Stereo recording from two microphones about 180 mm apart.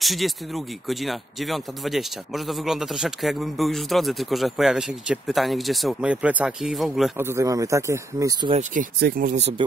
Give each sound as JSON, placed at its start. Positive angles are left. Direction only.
{"t": 0.0, "sound": "speech", "side_deg": 0}
{"t": 7.2, "sound": "speech", "side_deg": -15}
{"t": 9.0, "sound": "speech", "side_deg": -50}
{"t": 9.4, "sound": "speech", "side_deg": -35}